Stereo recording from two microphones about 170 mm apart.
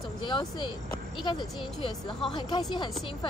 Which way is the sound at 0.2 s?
25° left (ahead or behind).